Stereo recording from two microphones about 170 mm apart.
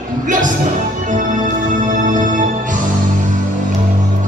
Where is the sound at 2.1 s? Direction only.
50° right (ahead or behind).